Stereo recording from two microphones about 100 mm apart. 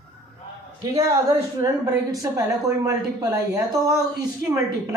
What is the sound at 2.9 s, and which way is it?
Speech, 35° right (ahead or behind).